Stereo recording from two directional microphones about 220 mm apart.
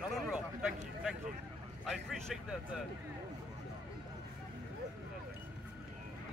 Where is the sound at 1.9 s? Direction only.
Centre (ahead or behind).